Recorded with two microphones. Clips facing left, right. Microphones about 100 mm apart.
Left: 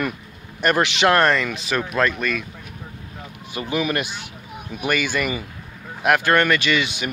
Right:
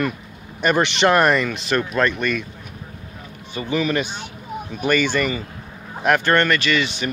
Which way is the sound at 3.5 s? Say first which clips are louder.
Right 2 dB; 10° left (ahead or behind).